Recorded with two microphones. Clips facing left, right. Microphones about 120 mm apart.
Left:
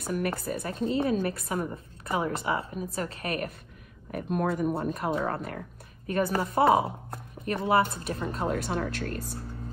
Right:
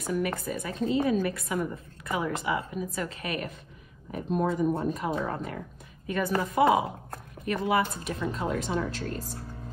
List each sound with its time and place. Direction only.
0.5 s a woman's voice: 40° left (ahead or behind)
4.1 s speech: 60° left (ahead or behind)
6.0 s a woman's voice: 40° left (ahead or behind); by 9.2 s 55° left (ahead or behind)